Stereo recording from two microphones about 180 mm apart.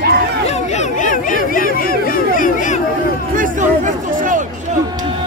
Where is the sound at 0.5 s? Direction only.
40° left (ahead or behind).